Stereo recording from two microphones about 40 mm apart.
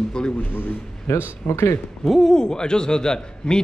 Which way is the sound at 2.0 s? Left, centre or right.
Centre.